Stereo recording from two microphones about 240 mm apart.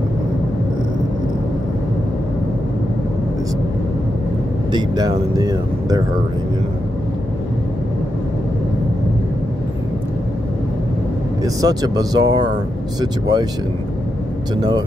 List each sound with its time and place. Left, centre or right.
4.7 s speech: centre
11.4 s speech: centre